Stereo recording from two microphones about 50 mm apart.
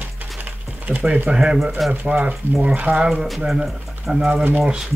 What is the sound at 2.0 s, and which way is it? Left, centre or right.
Speech, right.